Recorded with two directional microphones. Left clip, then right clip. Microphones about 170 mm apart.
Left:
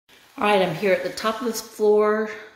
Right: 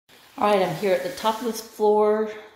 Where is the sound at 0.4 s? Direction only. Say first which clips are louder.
Left 1 dB; 15° left (ahead or behind).